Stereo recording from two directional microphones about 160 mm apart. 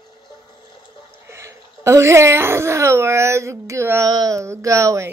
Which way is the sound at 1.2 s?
15° right (ahead or behind).